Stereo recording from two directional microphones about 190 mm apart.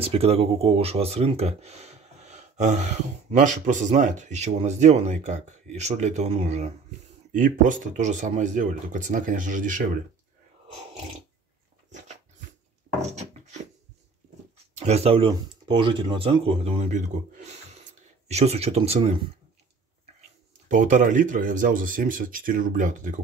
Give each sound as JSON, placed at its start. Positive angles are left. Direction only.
{"t": 0.0, "sound": "speech", "side_deg": -30}
{"t": 13.0, "sound": "wood", "side_deg": -35}
{"t": 14.7, "sound": "speech", "side_deg": -35}
{"t": 20.7, "sound": "speech", "side_deg": -40}